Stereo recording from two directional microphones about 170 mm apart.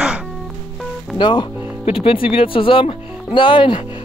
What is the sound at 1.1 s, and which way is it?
Speech, 25° left (ahead or behind).